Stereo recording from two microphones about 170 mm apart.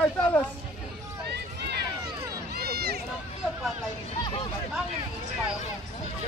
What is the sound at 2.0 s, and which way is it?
Run, 20° right (ahead or behind).